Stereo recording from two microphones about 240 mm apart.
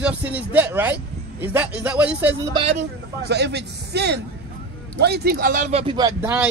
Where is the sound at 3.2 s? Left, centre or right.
Right.